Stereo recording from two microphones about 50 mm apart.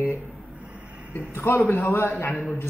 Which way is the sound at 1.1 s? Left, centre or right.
Left.